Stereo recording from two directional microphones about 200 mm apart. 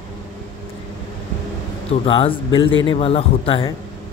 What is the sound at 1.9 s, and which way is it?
Speech, 25° left (ahead or behind).